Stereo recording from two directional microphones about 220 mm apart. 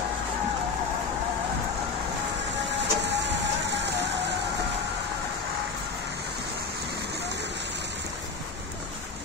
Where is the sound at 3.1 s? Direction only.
50° right (ahead or behind).